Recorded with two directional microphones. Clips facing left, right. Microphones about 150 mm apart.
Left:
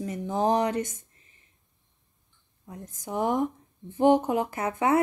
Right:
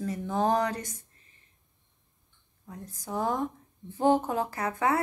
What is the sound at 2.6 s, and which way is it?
A woman's voice, 20° left (ahead or behind).